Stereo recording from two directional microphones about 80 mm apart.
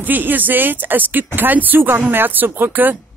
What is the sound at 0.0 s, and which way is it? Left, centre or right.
Speech, right.